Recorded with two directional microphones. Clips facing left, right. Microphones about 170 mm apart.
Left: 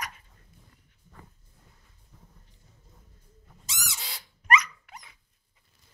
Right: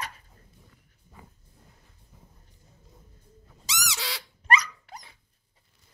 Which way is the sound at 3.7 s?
80° right.